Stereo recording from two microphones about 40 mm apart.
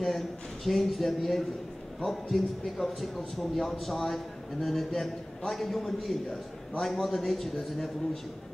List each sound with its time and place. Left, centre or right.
0.7 s a man's voice: centre